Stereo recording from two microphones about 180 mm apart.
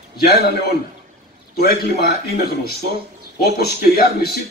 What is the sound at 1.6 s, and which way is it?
Speech, 60° left (ahead or behind).